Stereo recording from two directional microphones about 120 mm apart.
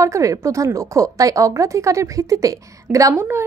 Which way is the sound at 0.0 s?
25° right (ahead or behind).